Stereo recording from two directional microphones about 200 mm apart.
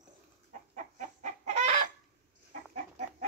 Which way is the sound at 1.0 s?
35° right (ahead or behind).